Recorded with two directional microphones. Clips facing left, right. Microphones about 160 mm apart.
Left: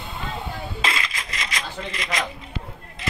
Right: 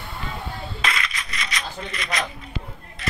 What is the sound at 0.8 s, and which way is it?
Coin, 25° left (ahead or behind).